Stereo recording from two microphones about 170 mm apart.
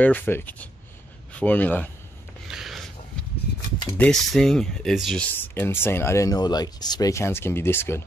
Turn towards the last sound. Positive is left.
turn(degrees=15)  # may be behind; listen again after turning